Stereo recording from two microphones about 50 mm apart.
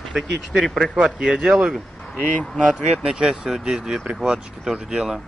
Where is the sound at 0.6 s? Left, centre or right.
Centre.